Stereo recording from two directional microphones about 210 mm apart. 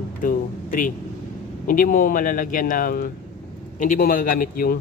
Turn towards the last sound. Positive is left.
turn(degrees=45)  # may be behind; listen again after turning